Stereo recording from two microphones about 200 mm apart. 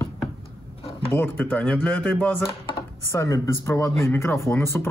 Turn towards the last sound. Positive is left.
turn(degrees=10)  # may be behind; listen again after turning